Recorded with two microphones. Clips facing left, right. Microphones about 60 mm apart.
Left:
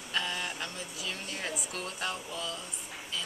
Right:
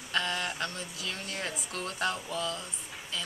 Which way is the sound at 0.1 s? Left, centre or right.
Centre.